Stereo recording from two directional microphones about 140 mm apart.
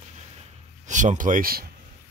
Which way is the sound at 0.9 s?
60° right (ahead or behind).